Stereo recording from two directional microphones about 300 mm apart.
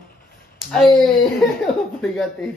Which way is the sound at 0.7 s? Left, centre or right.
Centre.